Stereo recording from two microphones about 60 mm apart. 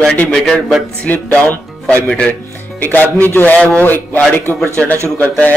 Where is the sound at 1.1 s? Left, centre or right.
Left.